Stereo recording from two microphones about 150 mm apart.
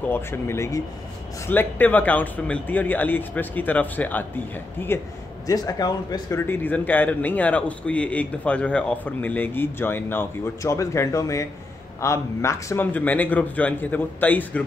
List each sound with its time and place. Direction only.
0.1 s a man's voice: 15° left (ahead or behind)
6.4 s a man's voice: 15° left (ahead or behind)